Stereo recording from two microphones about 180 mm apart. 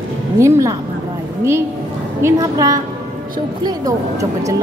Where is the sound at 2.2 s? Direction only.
20° right (ahead or behind).